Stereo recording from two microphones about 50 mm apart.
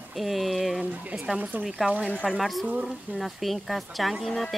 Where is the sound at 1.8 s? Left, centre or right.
Centre.